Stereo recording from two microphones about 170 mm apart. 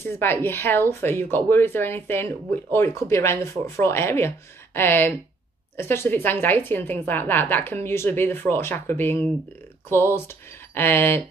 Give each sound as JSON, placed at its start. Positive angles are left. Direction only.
{"t": 0.0, "sound": "speech", "side_deg": 10}